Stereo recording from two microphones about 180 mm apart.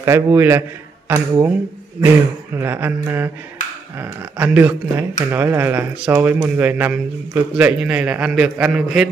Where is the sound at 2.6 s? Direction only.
10° right (ahead or behind).